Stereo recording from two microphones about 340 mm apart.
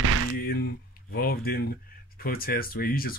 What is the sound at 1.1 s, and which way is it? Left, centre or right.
Speech, left.